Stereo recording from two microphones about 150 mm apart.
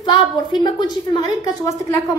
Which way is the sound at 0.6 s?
30° left (ahead or behind).